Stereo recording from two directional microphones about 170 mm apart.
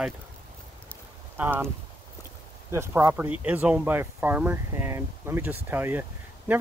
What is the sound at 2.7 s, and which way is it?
Speech, 15° right (ahead or behind).